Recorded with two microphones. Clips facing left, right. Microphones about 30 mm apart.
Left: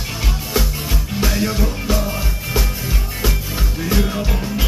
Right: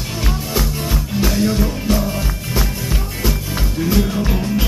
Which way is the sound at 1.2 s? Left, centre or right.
Centre.